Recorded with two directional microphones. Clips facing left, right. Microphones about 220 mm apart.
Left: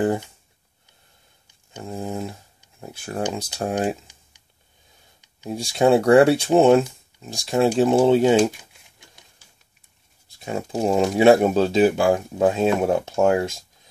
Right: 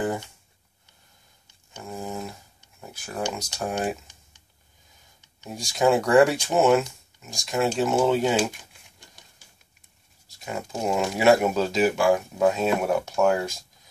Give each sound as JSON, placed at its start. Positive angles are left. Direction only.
{"t": 1.8, "sound": "speech", "side_deg": 30}
{"t": 5.5, "sound": "speech", "side_deg": 30}
{"t": 10.4, "sound": "speech", "side_deg": 30}